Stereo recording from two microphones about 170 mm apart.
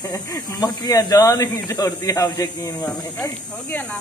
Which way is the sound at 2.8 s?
5° left (ahead or behind).